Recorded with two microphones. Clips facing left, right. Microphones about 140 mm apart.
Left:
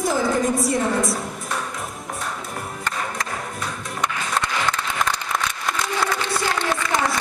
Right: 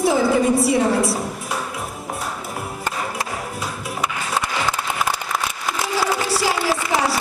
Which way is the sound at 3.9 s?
5° right (ahead or behind).